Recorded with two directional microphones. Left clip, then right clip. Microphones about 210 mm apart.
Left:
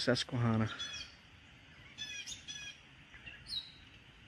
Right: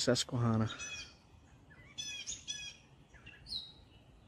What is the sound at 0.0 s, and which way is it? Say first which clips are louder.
Speech: right 1 dB; 10° right (ahead or behind).